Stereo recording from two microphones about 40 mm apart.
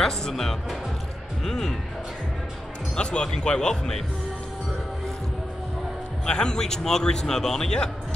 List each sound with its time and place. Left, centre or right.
0.0 s a man's voice: centre
3.0 s speech: left
6.2 s a man's voice: centre